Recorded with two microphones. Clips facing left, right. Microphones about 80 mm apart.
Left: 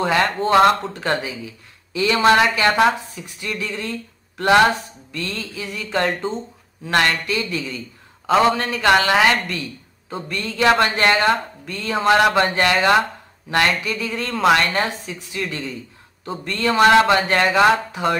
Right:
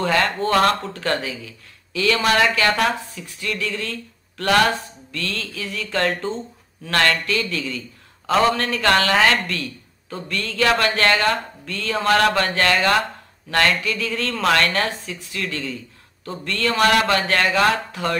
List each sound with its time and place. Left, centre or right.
0.0 s speech: centre
2.0 s speech: left